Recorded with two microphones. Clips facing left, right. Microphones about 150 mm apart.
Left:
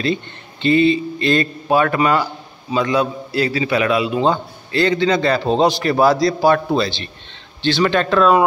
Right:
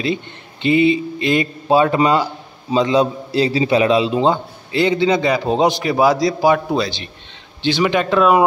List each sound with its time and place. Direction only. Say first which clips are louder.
0.0 s a man's voice: left 1 dB; 15° right (ahead or behind)